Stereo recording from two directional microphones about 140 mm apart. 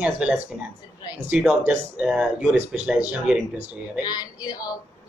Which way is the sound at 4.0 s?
25° left (ahead or behind).